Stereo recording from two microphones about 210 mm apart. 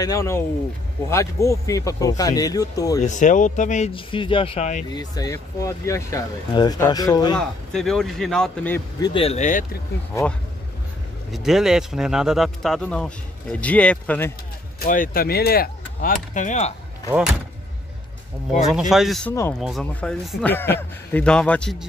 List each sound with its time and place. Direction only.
0.0 s speech: 15° left (ahead or behind)
3.0 s speech: 35° left (ahead or behind)
4.9 s speech: 20° left (ahead or behind)
7.3 s speech: centre (ahead or behind)
9.1 s speech: 30° left (ahead or behind)
11.3 s speech: centre (ahead or behind)
14.8 s speech: 45° left (ahead or behind)
18.7 s speech: centre (ahead or behind)